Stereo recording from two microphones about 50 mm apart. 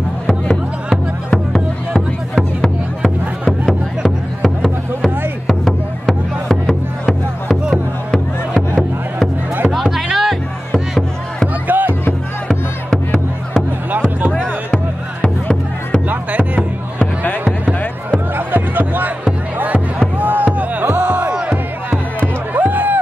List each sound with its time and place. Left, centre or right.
1.3 s music: centre
5.5 s music: centre
9.7 s music: centre
11.6 s music: right
14.3 s music: centre
16.1 s music: right
18.3 s music: right
20.2 s music: right
21.3 s music: right
21.9 s music: right